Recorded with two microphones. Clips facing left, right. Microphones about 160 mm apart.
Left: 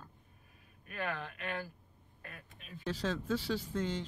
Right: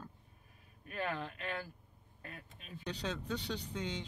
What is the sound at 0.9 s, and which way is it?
Speech, 35° right (ahead or behind).